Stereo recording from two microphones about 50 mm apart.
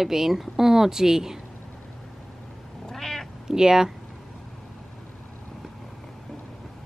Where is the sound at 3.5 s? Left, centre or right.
Centre.